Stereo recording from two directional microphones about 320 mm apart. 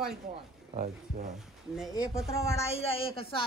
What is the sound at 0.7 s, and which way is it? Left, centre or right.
Speech, right.